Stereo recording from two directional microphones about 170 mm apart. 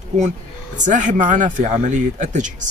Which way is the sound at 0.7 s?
45° right (ahead or behind).